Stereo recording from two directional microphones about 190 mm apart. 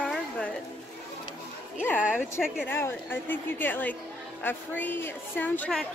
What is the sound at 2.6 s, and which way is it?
A woman's voice, 10° left (ahead or behind).